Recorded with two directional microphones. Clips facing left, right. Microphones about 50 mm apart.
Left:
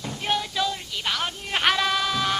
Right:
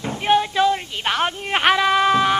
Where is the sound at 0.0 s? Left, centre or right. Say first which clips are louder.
Right 9 dB; right.